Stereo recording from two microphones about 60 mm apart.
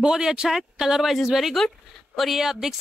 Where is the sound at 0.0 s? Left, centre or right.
Centre.